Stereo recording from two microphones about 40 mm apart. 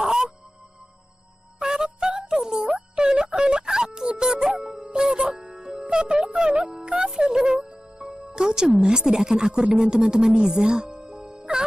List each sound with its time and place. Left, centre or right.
0.0 s music: centre
1.6 s music: centre
7.2 s music: centre
7.8 s music: right
8.4 s music: centre
8.8 s speech: centre
11.2 s music: right